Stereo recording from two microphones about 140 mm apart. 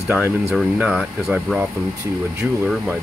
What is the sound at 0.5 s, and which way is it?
Speech, 5° right (ahead or behind).